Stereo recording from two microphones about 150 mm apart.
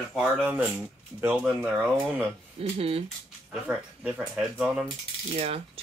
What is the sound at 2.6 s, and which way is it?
Speech, 40° right (ahead or behind).